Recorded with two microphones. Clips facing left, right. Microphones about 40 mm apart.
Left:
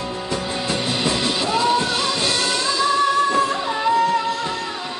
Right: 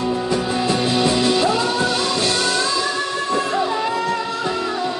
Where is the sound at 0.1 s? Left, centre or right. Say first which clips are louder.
Right 5 dB; centre.